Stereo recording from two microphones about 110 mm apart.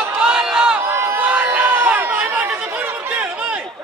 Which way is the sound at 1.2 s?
10° right (ahead or behind).